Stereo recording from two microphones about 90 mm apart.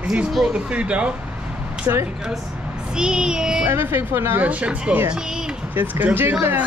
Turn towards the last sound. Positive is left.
turn(degrees=-20)  # may be behind; listen again after turning